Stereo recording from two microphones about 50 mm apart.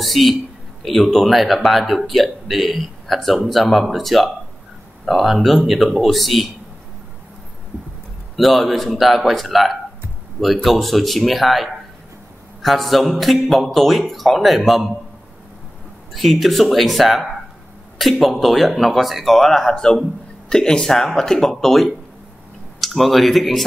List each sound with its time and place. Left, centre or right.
0.0 s speech: centre
8.4 s speech: centre
16.1 s speech: centre